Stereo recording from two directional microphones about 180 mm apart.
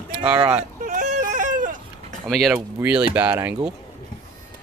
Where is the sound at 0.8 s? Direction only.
45° right (ahead or behind).